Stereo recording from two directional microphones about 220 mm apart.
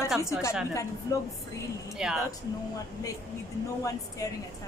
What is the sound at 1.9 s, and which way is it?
Speech, centre (ahead or behind).